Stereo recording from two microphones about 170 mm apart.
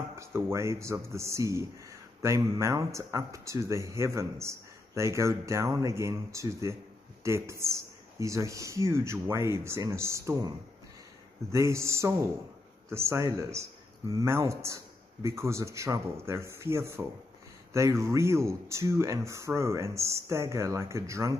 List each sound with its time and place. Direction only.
0.1 s speech: 15° right (ahead or behind)
11.5 s speech: 15° right (ahead or behind)